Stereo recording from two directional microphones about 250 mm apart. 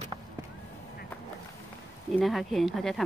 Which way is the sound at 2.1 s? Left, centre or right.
Centre.